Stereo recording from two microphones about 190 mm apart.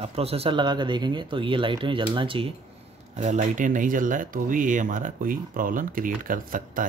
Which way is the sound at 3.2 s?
40° right (ahead or behind).